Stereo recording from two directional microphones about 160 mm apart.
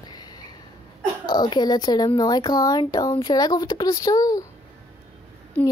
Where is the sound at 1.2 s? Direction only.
25° left (ahead or behind).